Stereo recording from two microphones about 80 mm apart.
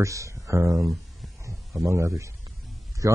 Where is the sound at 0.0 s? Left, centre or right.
Right.